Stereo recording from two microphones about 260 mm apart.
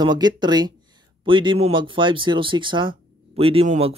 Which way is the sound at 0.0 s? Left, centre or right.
Centre.